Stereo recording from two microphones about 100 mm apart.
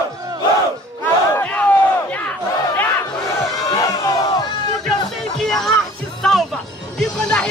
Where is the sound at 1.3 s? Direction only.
15° left (ahead or behind).